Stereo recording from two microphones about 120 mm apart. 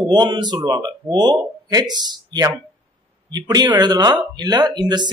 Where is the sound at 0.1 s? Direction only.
40° right (ahead or behind).